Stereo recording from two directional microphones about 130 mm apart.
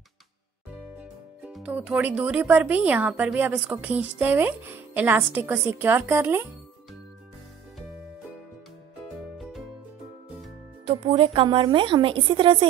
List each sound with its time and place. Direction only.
0.9 s speech: 10° right (ahead or behind)
10.9 s a woman's voice: 45° right (ahead or behind)